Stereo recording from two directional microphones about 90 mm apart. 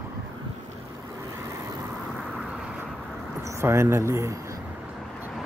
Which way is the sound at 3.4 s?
35° right (ahead or behind).